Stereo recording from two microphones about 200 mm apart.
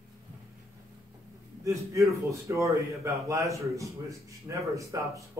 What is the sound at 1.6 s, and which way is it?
A man's voice, 15° right (ahead or behind).